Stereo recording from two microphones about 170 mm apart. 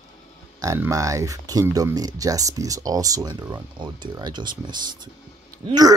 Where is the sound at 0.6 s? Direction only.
20° right (ahead or behind).